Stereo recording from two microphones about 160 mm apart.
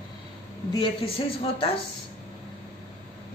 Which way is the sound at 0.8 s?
35° left (ahead or behind).